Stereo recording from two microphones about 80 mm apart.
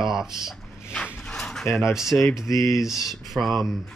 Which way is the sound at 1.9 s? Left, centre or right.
Centre.